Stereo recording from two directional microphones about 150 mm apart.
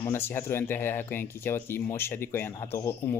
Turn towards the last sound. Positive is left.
turn(degrees=15)  # may be behind; listen again after turning